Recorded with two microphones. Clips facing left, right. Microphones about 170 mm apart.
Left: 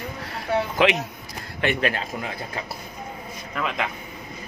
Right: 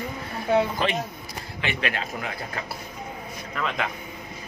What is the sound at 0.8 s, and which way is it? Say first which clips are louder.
Speech: left 6 dB; 80° left.